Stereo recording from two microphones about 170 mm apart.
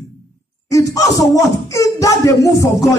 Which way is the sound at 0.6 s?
20° left (ahead or behind).